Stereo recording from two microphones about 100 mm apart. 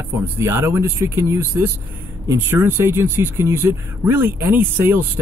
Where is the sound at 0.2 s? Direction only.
25° right (ahead or behind).